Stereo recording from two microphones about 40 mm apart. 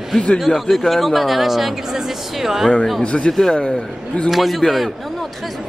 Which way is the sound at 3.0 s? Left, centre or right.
Left.